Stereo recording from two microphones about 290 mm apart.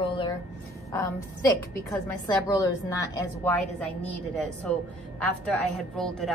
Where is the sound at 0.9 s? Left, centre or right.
Centre.